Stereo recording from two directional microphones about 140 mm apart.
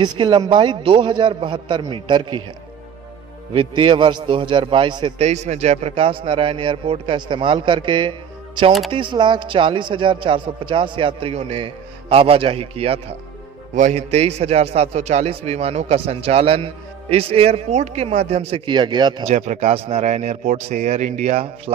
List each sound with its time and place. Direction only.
0.0 s a man's voice: 30° right (ahead or behind)
3.5 s a man's voice: 35° right (ahead or behind)
5.2 s a man's voice: 50° right (ahead or behind)
18.7 s a man's voice: 30° right (ahead or behind)
19.2 s a man's voice: 55° right (ahead or behind)